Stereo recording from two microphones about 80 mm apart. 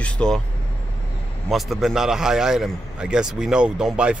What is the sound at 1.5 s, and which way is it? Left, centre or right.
A man's voice, centre.